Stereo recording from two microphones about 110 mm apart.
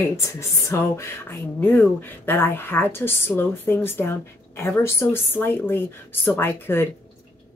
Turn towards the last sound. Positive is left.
turn(degrees=20)  # may be behind; listen again after turning